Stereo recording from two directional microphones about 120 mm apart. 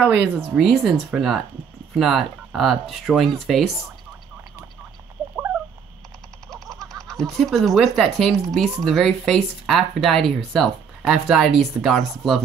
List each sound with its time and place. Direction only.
0.0 s speech: 15° right (ahead or behind)
0.6 s speech: centre (ahead or behind)
6.5 s speech: centre (ahead or behind)